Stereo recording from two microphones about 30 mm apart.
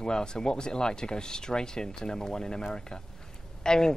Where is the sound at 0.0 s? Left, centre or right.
Left.